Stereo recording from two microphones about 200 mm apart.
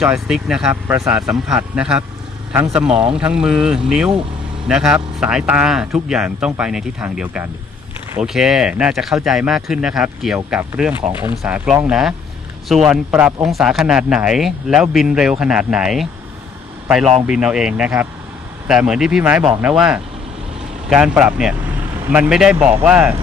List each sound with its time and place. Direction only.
0.0 s a man's voice: centre (ahead or behind)